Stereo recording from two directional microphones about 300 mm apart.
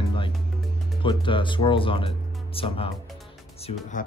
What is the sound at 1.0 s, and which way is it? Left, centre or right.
Speech, centre.